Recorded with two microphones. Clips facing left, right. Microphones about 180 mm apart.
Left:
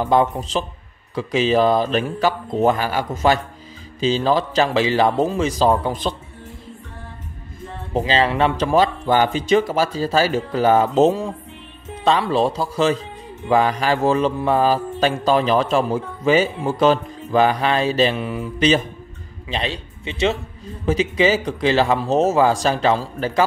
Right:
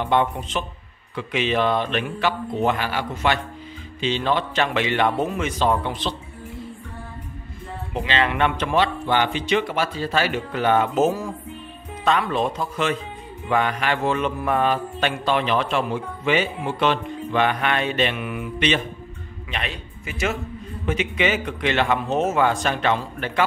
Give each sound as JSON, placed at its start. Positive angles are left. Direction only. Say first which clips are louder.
{"t": 0.0, "sound": "mantra", "louder": "left 4 dB", "side_deg": 35}
{"t": 7.9, "sound": "mantra", "louder": "left 5 dB", "side_deg": 35}
{"t": 19.5, "sound": "speech", "louder": "left 6 dB", "side_deg": 30}
{"t": 20.8, "sound": "mantra", "louder": "left 5 dB", "side_deg": 35}